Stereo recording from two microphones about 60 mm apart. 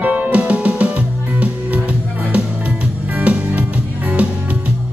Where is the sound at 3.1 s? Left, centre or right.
Right.